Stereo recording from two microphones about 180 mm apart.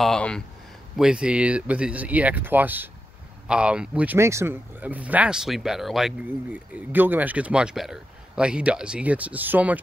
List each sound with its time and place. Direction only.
0.0 s speech: 5° left (ahead or behind)